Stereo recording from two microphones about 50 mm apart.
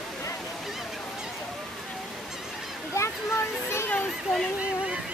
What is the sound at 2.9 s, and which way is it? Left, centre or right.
Speech, left.